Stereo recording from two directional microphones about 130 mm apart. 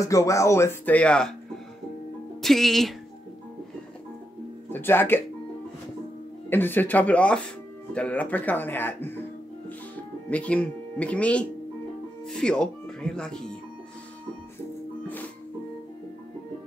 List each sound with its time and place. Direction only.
0.0 s speech: 25° left (ahead or behind); by 1.3 s 10° left (ahead or behind)
2.4 s speech: centre (ahead or behind)
4.6 s speech: 15° left (ahead or behind)
6.5 s speech: 15° left (ahead or behind)
10.3 s speech: 10° left (ahead or behind)